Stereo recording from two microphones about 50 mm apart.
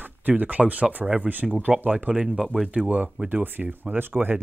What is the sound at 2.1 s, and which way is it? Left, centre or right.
Speech, centre.